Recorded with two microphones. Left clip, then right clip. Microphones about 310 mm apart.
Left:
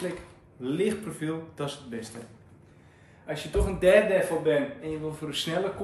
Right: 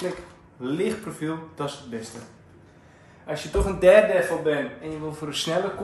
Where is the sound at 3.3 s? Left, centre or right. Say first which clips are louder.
Right 3 dB; centre.